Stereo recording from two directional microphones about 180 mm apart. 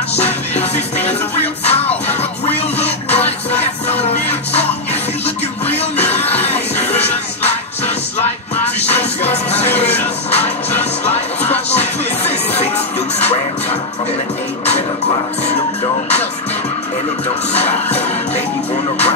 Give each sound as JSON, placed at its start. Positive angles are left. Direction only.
{"t": 0.1, "sound": "music", "side_deg": 35}
{"t": 17.5, "sound": "music", "side_deg": 35}